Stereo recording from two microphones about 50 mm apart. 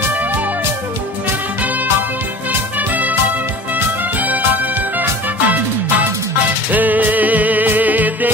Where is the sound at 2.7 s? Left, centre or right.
Right.